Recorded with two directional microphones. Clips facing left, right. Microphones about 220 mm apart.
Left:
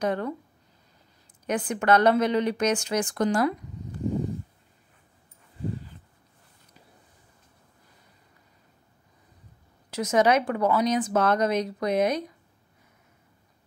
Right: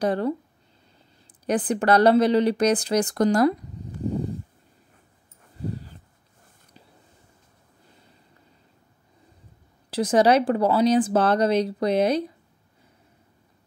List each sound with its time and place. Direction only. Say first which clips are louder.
0.0 s speech: right 4 dB; 35° right (ahead or behind)
1.4 s speech: right 4 dB; 35° right (ahead or behind)
3.8 s a sound: right 1 dB; 35° right (ahead or behind)
5.6 s dog: right 1 dB; 40° right (ahead or behind)
9.8 s speech: right 3 dB; 30° right (ahead or behind)